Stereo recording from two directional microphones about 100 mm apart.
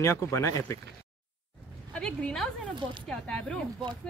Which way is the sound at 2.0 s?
5° left (ahead or behind).